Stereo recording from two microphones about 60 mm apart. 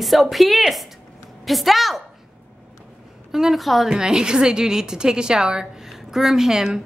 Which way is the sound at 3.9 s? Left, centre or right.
Centre.